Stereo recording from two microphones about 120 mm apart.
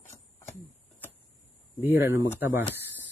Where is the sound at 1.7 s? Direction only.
20° right (ahead or behind).